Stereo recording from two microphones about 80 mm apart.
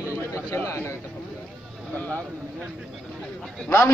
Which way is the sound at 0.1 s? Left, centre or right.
Left.